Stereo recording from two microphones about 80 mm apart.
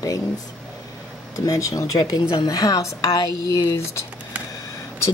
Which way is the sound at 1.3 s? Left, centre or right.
Left.